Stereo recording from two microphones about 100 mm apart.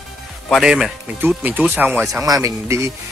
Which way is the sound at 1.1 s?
20° right (ahead or behind).